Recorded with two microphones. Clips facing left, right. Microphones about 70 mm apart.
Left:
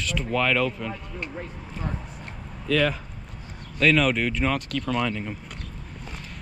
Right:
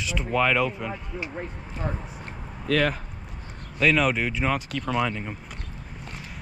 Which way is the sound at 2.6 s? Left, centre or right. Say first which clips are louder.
Even; right.